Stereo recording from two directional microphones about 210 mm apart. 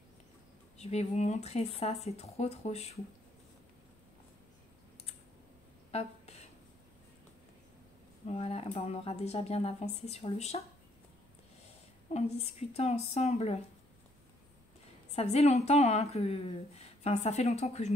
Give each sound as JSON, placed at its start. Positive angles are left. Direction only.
{"t": 0.7, "sound": "a woman's voice", "side_deg": 30}
{"t": 5.9, "sound": "a sound", "side_deg": 30}
{"t": 8.3, "sound": "a woman's voice", "side_deg": 30}
{"t": 12.1, "sound": "speech", "side_deg": 30}
{"t": 15.1, "sound": "a woman's voice", "side_deg": 30}